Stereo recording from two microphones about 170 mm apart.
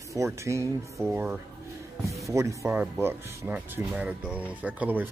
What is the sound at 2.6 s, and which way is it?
Speech, centre (ahead or behind).